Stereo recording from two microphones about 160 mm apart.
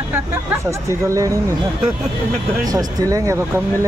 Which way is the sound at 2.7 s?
20° right (ahead or behind).